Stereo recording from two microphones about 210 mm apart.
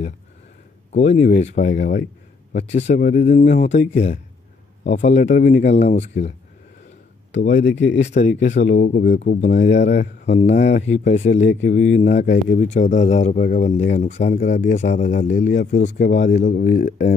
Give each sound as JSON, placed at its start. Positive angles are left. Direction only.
{"t": 0.9, "sound": "a man's voice", "side_deg": 30}
{"t": 7.3, "sound": "speech", "side_deg": 55}
{"t": 8.5, "sound": "a man's voice", "side_deg": 35}
{"t": 9.6, "sound": "speech", "side_deg": 55}
{"t": 10.2, "sound": "a man's voice", "side_deg": 35}
{"t": 11.6, "sound": "speech", "side_deg": 60}
{"t": 12.0, "sound": "a man's voice", "side_deg": 35}